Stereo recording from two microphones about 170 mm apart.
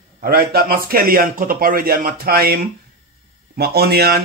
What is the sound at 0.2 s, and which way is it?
A man's voice, 65° right (ahead or behind).